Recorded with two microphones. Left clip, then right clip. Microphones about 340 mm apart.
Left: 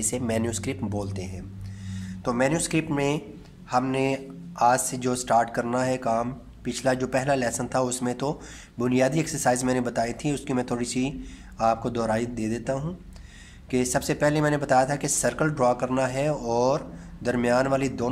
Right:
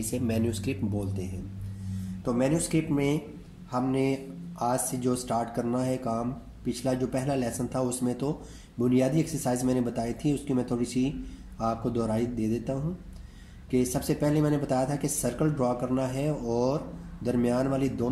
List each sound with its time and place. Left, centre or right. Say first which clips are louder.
0.5 s speech: left 2 dB; left
2.2 s speech: left 4 dB; left
2.5 s speech: left 2 dB; left
11.1 s speech: left 1 dB; left
13.7 s speech: left 3 dB; left